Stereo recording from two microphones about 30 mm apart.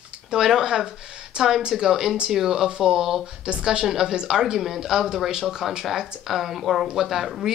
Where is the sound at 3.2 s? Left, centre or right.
Right.